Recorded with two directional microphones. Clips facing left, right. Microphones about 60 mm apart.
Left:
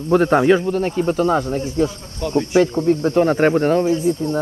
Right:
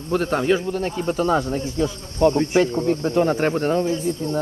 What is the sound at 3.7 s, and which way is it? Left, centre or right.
Speech, centre.